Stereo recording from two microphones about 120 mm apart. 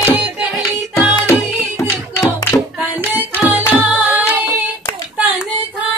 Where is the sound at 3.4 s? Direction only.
15° right (ahead or behind).